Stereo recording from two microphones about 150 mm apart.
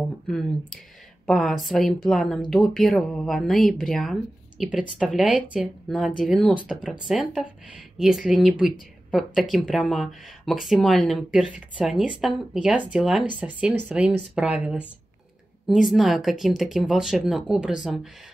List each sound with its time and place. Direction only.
0.3 s speech: centre (ahead or behind)